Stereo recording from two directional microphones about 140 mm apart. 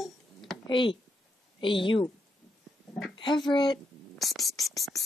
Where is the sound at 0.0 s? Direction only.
Centre (ahead or behind).